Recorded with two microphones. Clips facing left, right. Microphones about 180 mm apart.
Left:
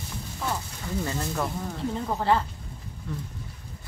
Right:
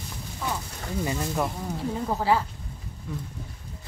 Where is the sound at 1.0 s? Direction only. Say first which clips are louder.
Right 3 dB; 15° right (ahead or behind).